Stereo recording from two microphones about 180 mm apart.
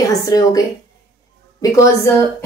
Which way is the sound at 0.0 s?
20° left (ahead or behind).